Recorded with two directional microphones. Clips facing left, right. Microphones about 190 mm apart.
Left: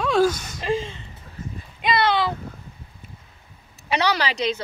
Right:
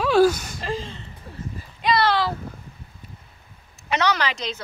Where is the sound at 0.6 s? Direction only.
10° left (ahead or behind).